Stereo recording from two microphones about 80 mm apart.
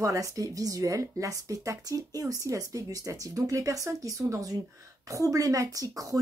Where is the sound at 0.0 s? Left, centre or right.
Right.